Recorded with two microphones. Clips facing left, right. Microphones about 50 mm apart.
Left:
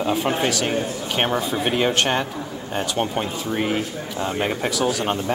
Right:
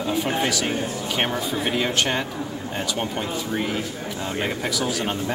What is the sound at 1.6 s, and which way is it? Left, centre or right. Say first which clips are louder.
Speech: left 2 dB; left.